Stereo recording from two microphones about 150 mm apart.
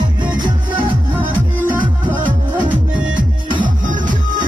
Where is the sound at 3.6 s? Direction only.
60° right (ahead or behind).